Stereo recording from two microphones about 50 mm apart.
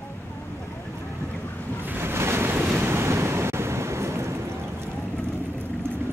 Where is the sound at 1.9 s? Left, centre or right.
Right.